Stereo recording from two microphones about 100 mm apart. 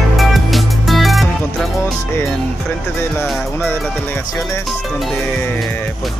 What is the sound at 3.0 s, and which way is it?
Music, 25° left (ahead or behind).